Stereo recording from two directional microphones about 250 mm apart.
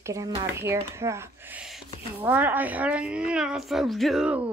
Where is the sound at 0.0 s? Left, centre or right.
Centre.